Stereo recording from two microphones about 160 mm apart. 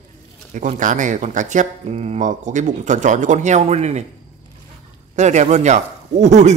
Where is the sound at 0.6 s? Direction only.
55° right (ahead or behind).